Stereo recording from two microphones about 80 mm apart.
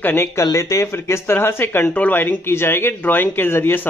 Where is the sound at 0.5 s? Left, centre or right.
Left.